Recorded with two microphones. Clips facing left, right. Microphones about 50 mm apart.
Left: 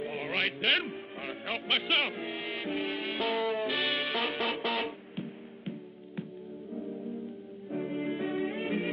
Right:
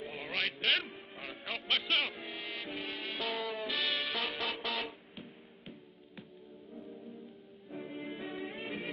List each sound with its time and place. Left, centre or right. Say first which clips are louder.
0.0 s a sound: left 7 dB; centre
0.3 s a man's voice: left 3 dB; left
1.2 s music: left 4 dB; left
2.0 s speech: left 4 dB; centre
3.5 s music: left 5 dB; centre
6.7 s music: left 10 dB; centre